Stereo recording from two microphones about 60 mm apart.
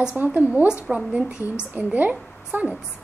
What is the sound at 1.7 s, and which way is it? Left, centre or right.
A woman's voice, right.